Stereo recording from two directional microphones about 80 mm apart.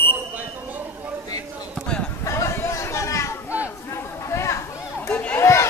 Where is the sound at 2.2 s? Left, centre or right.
Left.